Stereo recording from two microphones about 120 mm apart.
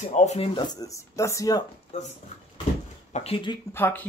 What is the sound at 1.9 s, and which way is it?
Speech, 65° left (ahead or behind).